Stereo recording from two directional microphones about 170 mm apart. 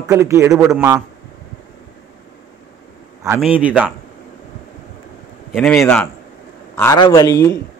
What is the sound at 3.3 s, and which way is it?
Speech, 5° right (ahead or behind).